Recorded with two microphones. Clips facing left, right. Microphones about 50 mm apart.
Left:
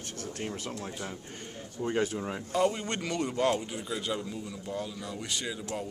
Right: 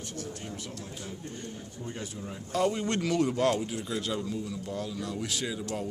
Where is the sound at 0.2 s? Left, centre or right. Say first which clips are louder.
Left 4 dB; left.